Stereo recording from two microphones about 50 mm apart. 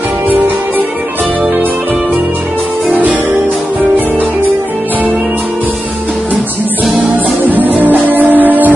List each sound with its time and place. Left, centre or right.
2.9 s music: right
7.4 s music: right